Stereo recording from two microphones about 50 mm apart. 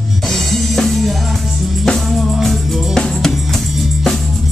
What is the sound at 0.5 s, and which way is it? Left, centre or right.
Music, centre.